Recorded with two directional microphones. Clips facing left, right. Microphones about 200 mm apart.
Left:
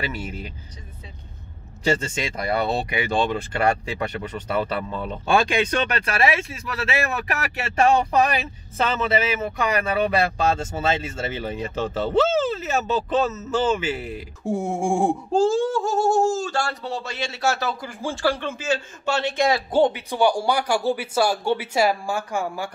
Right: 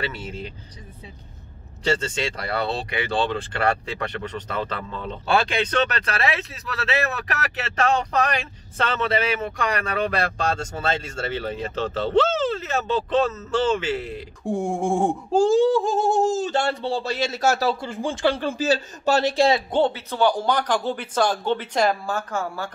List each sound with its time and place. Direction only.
0.0 s speech: 10° left (ahead or behind)
1.9 s speech: 10° left (ahead or behind)
15.3 s speech: 15° right (ahead or behind); by 17.9 s 35° right (ahead or behind)
18.0 s speech: 20° right (ahead or behind)
18.4 s speech: 35° right (ahead or behind)
19.7 s speech: 15° left (ahead or behind)